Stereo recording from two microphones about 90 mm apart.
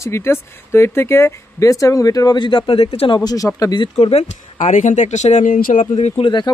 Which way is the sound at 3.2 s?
40° left (ahead or behind).